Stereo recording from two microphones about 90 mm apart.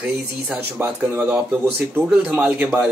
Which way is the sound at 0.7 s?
20° right (ahead or behind).